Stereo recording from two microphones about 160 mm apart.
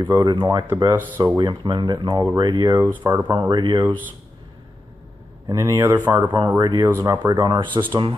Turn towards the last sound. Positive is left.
turn(degrees=-30)  # may be behind; listen again after turning